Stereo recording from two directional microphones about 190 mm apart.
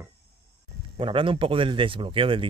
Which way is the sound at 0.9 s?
30° right (ahead or behind).